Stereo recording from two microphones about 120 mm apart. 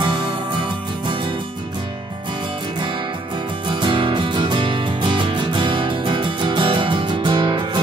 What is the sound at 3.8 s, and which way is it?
Music, 45° right (ahead or behind).